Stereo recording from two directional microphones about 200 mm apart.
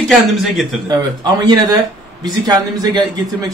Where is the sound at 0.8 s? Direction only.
20° right (ahead or behind).